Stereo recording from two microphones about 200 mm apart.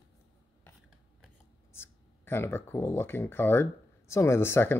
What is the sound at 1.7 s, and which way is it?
Speech, 10° left (ahead or behind).